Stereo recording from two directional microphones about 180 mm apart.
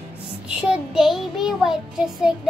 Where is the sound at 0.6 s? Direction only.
5° right (ahead or behind).